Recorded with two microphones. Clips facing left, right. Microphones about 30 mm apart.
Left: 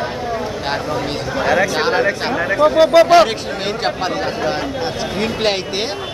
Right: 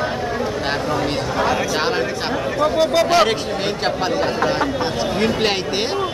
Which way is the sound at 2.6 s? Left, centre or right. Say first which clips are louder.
Left 6 dB; centre.